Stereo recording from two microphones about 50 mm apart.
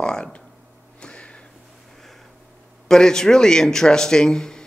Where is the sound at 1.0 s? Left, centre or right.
Left.